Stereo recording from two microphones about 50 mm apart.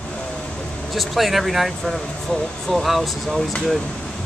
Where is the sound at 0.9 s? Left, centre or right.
Centre.